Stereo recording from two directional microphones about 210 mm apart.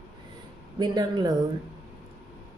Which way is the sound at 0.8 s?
20° right (ahead or behind).